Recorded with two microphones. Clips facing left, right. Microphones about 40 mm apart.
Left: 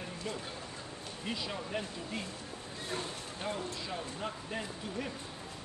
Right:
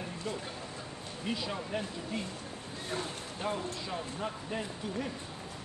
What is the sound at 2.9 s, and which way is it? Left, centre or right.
Speech, right.